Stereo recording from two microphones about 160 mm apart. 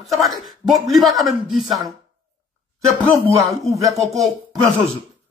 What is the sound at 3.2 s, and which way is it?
Speech, 20° right (ahead or behind).